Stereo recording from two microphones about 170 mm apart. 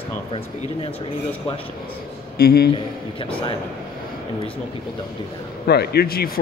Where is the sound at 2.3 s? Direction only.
65° left (ahead or behind).